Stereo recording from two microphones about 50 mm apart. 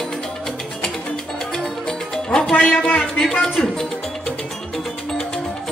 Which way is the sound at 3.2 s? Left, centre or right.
Centre.